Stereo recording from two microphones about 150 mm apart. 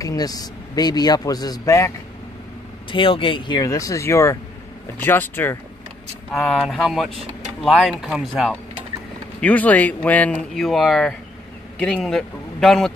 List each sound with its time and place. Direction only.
0.0 s a man's voice: 25° left (ahead or behind)
2.9 s a man's voice: 35° left (ahead or behind); by 5.6 s 15° left (ahead or behind)
6.3 s speech: centre (ahead or behind)
9.4 s speech: 10° left (ahead or behind)